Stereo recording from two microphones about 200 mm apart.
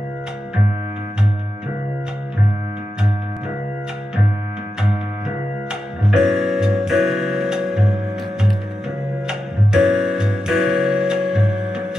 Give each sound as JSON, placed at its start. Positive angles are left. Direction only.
{"t": 6.0, "sound": "music", "side_deg": -5}